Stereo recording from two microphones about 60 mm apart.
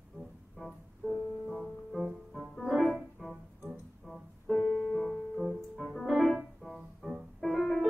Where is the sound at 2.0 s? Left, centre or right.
Centre.